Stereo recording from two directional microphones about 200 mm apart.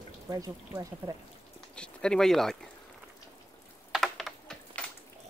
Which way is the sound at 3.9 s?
Centre (ahead or behind).